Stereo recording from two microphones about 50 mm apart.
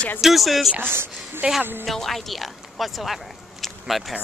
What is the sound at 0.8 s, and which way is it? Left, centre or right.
Speech, right.